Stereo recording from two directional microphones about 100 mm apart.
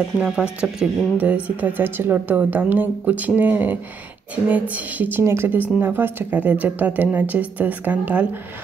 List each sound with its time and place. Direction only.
0.2 s speech: 5° right (ahead or behind)